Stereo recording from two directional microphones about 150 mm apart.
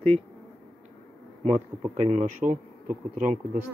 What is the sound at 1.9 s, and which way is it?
Speech, 50° right (ahead or behind).